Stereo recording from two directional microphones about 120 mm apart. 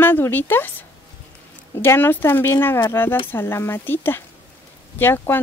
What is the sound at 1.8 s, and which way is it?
Speech, 20° left (ahead or behind).